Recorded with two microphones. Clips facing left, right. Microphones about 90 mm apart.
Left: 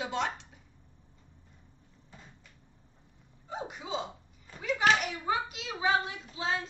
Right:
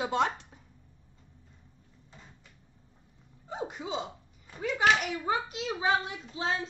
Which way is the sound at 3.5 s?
35° right (ahead or behind).